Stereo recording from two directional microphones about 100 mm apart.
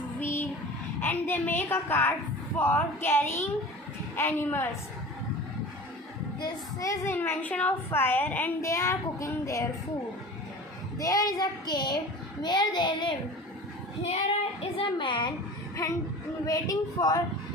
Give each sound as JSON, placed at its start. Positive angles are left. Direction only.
{"t": 0.2, "sound": "child singing", "side_deg": 20}
{"t": 1.0, "sound": "a woman's voice", "side_deg": 20}
{"t": 6.8, "sound": "speech", "side_deg": 35}
{"t": 7.2, "sound": "a woman's voice", "side_deg": 20}
{"t": 8.5, "sound": "child singing", "side_deg": 30}
{"t": 11.0, "sound": "a child's voice", "side_deg": 35}
{"t": 14.0, "sound": "child singing", "side_deg": 90}
{"t": 15.0, "sound": "a child's voice", "side_deg": 55}
{"t": 15.8, "sound": "speech", "side_deg": 35}